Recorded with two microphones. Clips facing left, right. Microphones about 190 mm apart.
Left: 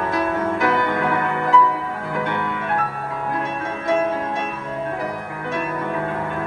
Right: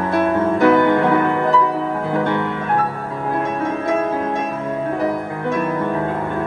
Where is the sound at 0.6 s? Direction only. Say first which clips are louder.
Right 10 dB; 30° right (ahead or behind).